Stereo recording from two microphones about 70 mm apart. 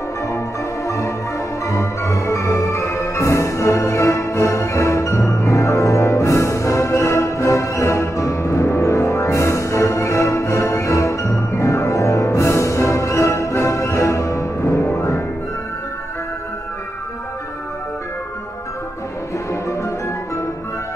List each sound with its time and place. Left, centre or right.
0.8 s music: left
19.5 s music: left